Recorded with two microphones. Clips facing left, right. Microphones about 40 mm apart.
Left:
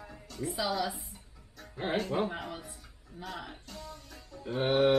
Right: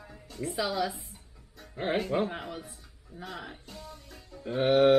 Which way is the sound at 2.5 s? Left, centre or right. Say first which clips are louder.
Right 1 dB; centre.